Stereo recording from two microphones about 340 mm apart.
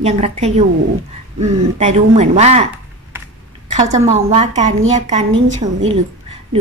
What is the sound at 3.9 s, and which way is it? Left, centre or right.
A woman's voice, centre.